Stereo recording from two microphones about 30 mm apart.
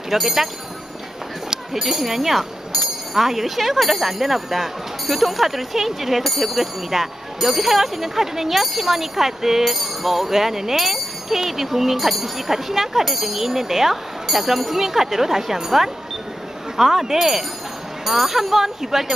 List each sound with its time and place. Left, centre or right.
0.1 s speech: centre
1.7 s speech: centre